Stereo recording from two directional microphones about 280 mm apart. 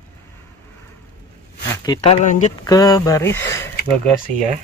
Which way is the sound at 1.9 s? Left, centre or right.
Left.